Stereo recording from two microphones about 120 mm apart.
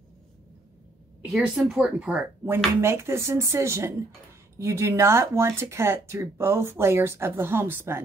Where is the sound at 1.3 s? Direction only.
5° right (ahead or behind).